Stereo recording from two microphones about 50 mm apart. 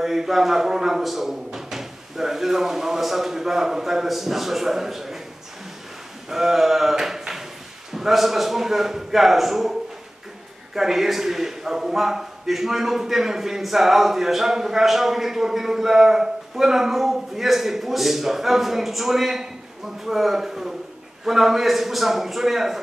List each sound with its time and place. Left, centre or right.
0.0 s a man's voice: centre
6.2 s a man's voice: centre